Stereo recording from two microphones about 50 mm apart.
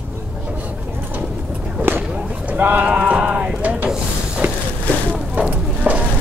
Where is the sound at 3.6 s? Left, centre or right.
Right.